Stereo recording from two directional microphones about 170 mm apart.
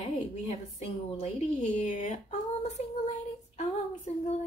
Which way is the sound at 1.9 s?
45° left (ahead or behind).